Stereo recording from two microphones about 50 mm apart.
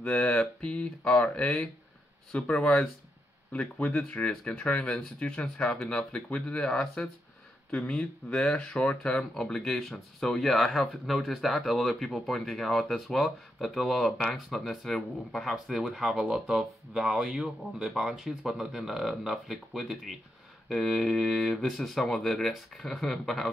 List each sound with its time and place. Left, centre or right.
0.0 s speech: centre
4.1 s speech: left
8.3 s speech: centre